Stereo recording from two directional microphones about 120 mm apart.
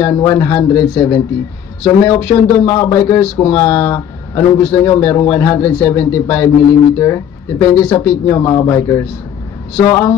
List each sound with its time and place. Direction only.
0.0 s speech: 30° left (ahead or behind)